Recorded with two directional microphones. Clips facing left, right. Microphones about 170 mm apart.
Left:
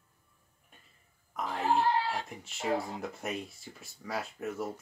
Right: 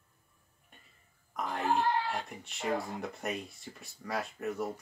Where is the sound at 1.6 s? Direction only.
40° left (ahead or behind).